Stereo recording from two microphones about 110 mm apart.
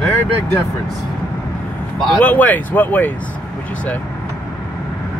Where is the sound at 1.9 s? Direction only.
10° left (ahead or behind).